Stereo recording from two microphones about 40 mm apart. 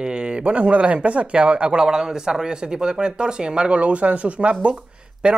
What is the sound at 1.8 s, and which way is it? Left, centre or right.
Speech, centre.